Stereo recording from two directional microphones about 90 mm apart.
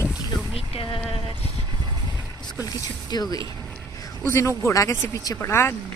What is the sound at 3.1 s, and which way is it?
Speech, 45° left (ahead or behind).